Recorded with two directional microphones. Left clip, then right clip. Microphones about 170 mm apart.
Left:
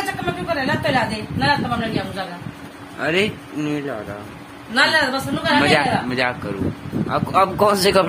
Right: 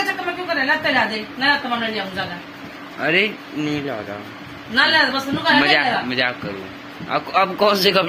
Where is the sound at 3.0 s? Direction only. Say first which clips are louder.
Right 2 dB; 20° left (ahead or behind).